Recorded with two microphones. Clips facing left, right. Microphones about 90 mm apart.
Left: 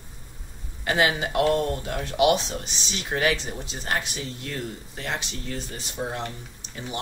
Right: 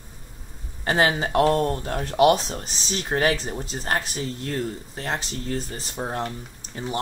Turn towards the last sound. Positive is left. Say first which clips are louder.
# right 5 dB
turn(degrees=-40)  # may be behind; listen again after turning